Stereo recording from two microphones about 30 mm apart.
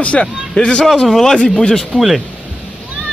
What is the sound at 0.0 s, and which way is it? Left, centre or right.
Speech, left.